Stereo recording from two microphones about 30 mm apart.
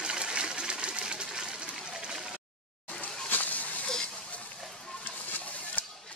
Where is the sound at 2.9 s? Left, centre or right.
Left.